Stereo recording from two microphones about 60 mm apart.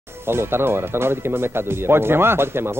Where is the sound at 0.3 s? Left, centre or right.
Right.